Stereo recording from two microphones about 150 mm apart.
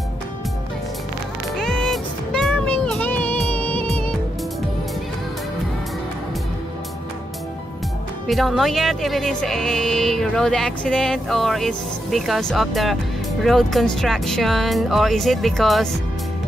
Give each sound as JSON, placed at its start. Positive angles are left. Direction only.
{"t": 1.6, "sound": "music", "side_deg": 0}
{"t": 8.3, "sound": "speech", "side_deg": 0}